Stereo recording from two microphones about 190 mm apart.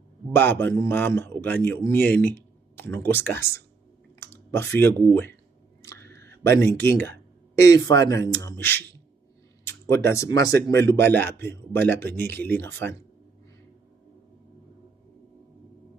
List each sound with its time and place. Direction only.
0.3 s a man's voice: 10° left (ahead or behind)
5.8 s clicking: 15° left (ahead or behind)
7.5 s a man's voice: 15° left (ahead or behind)